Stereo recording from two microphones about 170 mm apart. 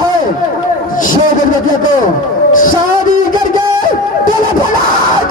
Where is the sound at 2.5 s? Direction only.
50° left (ahead or behind).